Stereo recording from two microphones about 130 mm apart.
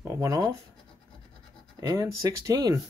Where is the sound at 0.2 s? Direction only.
25° right (ahead or behind).